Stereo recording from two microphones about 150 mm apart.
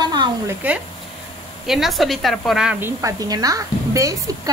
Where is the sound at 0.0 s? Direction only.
30° right (ahead or behind).